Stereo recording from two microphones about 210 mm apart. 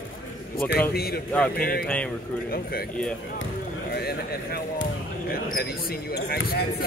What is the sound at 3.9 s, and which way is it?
Speech, 50° left (ahead or behind).